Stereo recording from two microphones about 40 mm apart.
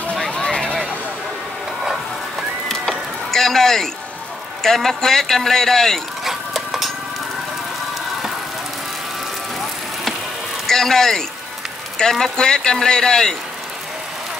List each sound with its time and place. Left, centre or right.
0.3 s a sound: centre
2.7 s music: centre
4.6 s speech: centre
6.2 s chicken: centre
10.7 s speech: centre